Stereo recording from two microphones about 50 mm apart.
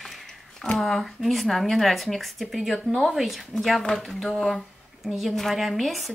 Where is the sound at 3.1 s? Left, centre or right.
Centre.